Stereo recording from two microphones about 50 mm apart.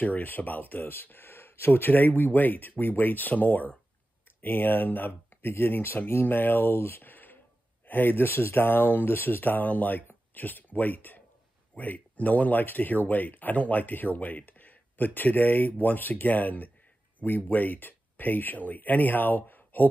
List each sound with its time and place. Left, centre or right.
0.0 s speech: left